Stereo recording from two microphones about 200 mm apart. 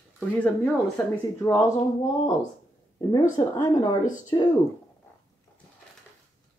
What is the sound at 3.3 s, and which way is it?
Speech, 20° left (ahead or behind).